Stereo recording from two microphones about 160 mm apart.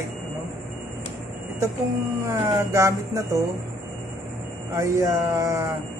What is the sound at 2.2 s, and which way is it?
Speech, 20° right (ahead or behind).